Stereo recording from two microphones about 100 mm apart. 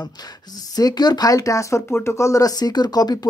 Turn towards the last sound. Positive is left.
turn(degrees=40)  # may be behind; listen again after turning